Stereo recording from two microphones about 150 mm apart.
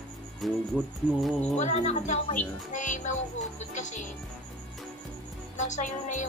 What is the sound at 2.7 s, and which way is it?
Music, 55° left (ahead or behind).